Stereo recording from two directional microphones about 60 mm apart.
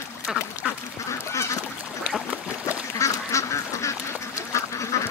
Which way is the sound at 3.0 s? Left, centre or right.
Left.